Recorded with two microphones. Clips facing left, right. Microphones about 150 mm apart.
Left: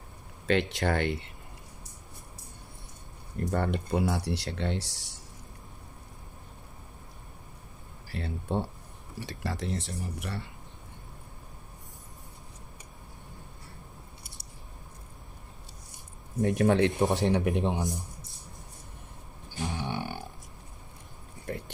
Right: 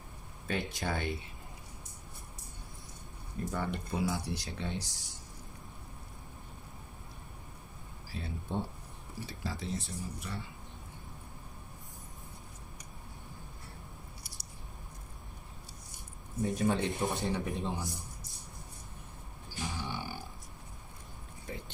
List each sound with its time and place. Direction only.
0.5 s speech: 80° left
3.3 s speech: 70° left (ahead or behind)
8.1 s speech: 70° left (ahead or behind)
16.3 s speech: 80° left
19.7 s grunt: 65° left (ahead or behind)
21.5 s a sound: 60° left (ahead or behind)